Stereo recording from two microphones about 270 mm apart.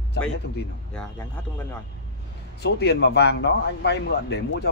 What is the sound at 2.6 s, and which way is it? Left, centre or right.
Speech, left.